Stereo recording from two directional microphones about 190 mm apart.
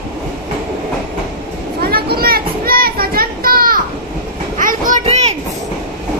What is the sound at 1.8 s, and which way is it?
Children playing, 55° right (ahead or behind).